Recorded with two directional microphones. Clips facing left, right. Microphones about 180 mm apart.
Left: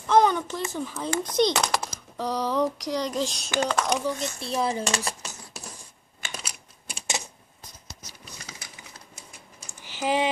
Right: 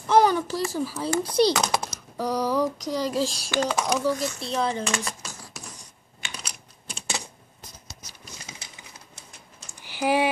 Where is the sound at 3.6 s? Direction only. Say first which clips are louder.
Even; 10° right (ahead or behind).